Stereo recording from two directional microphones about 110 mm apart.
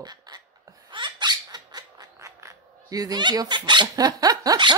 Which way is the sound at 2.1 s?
25° right (ahead or behind).